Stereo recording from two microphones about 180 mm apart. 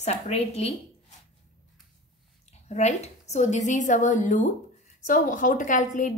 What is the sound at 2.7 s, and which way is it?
A woman's voice, 40° left (ahead or behind).